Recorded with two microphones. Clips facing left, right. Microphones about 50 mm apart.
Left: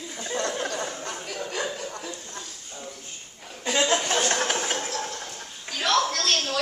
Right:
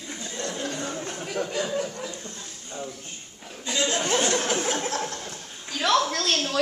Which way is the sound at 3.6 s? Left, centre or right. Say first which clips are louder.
Left 4 dB; left.